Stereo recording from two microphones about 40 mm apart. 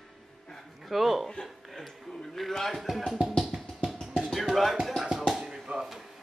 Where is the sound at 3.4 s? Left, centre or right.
Centre.